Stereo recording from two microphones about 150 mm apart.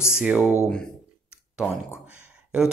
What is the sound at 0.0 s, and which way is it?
Speech, 5° right (ahead or behind).